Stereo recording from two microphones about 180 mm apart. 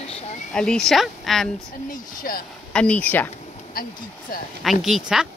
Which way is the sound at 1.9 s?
50° left (ahead or behind).